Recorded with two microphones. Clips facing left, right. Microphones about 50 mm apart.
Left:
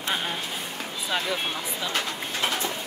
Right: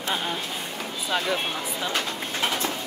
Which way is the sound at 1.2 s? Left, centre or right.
Centre.